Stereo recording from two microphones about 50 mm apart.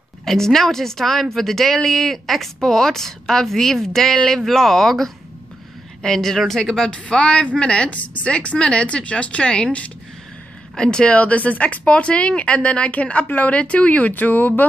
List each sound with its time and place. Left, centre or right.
0.2 s a woman's voice: centre
9.7 s a woman's voice: left
10.8 s a woman's voice: centre; by 14.5 s left